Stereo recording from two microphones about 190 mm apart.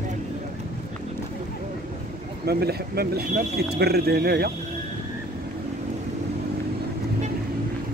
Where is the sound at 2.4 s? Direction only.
55° right (ahead or behind).